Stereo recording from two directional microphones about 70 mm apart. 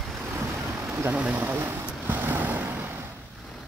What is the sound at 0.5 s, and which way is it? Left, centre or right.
Vehicle, right.